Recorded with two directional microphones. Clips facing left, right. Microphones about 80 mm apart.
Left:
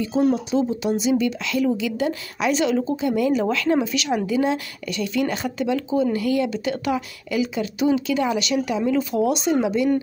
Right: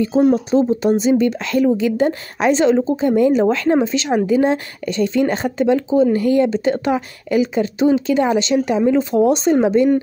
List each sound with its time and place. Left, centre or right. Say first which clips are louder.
0.3 s speech: right 6 dB; right